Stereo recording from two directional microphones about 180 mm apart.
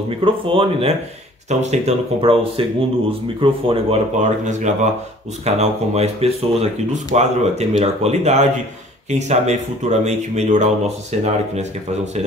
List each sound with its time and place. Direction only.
0.2 s speech: 30° right (ahead or behind)